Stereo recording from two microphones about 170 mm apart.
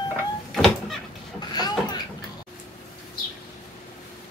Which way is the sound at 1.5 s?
25° left (ahead or behind).